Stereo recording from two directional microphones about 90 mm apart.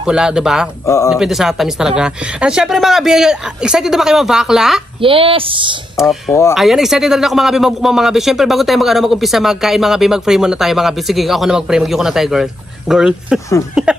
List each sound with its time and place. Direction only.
0.0 s speech: 10° right (ahead or behind)
0.8 s speech: 35° left (ahead or behind)
1.1 s speech: 5° right (ahead or behind)
5.0 s a woman's voice: 90° right; by 5.8 s 70° right (ahead or behind)
5.9 s speech: centre (ahead or behind)